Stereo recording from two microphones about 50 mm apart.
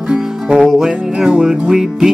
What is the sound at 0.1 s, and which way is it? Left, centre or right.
Music, centre.